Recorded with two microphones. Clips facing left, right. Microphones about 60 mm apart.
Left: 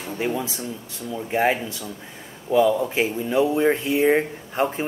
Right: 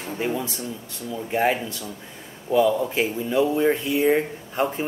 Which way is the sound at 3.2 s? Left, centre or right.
Centre.